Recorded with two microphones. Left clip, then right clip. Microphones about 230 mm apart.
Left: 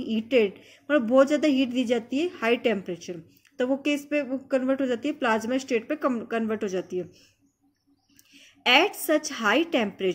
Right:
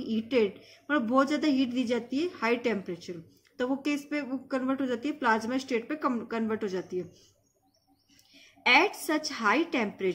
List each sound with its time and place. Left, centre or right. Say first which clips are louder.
0.0 s a woman's voice: left 4 dB; centre
8.3 s a woman's voice: left 2 dB; centre